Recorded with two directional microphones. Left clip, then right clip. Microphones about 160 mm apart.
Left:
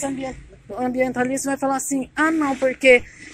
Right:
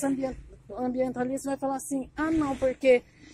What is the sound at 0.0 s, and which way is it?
Speech, 25° right (ahead or behind).